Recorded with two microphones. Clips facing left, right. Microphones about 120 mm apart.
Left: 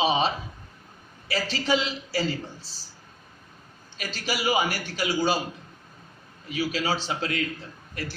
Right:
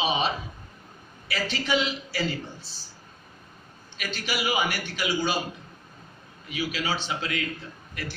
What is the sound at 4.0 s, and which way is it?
A man's voice, 35° left (ahead or behind).